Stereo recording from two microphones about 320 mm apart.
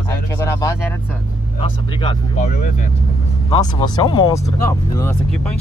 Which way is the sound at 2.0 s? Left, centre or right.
Centre.